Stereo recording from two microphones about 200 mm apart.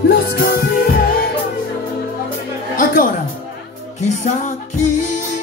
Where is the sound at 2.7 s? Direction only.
40° left (ahead or behind).